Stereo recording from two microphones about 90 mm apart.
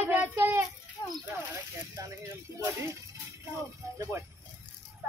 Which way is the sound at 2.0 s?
40° right (ahead or behind).